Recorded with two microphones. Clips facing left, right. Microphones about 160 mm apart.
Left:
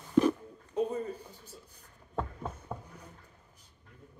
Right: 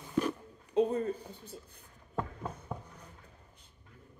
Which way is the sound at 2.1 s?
10° left (ahead or behind).